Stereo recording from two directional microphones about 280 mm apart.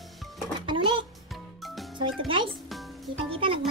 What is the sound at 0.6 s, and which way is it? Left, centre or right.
Music, centre.